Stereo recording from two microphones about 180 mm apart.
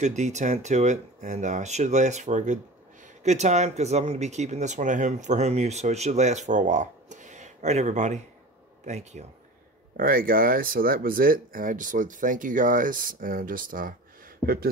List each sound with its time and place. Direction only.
0.0 s speech: 40° right (ahead or behind)
9.9 s speech: 55° right (ahead or behind)